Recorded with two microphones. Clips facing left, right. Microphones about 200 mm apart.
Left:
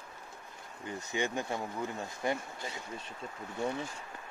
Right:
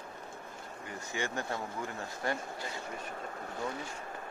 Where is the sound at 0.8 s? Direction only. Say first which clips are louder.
Left 3 dB; 20° left (ahead or behind).